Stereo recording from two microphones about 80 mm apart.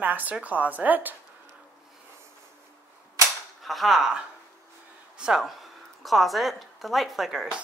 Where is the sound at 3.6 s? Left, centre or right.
Centre.